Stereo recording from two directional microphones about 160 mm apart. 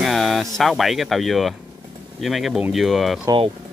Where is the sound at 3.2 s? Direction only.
30° right (ahead or behind).